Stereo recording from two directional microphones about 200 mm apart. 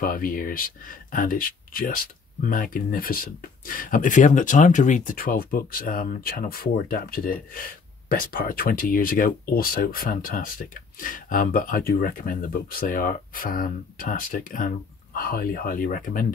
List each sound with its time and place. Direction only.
0.0 s speech: 45° left (ahead or behind)